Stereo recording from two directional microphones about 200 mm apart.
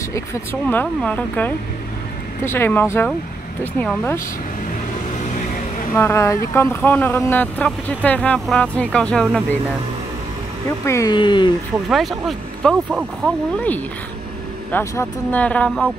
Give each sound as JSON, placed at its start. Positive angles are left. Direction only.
{"t": 0.1, "sound": "speech", "side_deg": 10}
{"t": 5.9, "sound": "speech", "side_deg": 15}
{"t": 10.9, "sound": "speech", "side_deg": 20}
{"t": 11.9, "sound": "speech", "side_deg": 0}